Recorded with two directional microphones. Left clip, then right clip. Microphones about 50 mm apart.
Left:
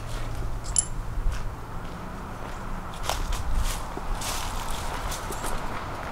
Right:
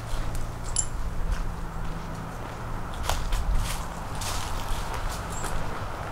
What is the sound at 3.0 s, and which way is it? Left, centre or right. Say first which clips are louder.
Biting: left 1 dB; centre.